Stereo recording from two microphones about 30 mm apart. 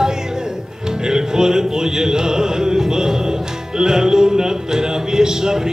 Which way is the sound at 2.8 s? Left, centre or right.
Centre.